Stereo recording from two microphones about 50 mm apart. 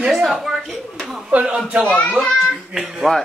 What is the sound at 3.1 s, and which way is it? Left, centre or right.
Speech, centre.